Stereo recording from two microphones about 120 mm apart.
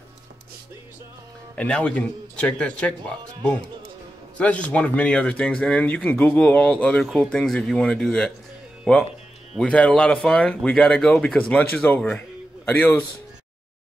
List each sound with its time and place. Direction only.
1.5 s speech: 10° left (ahead or behind)
4.4 s speech: 10° left (ahead or behind)
12.0 s speech: 5° left (ahead or behind)
12.6 s speech: 15° left (ahead or behind)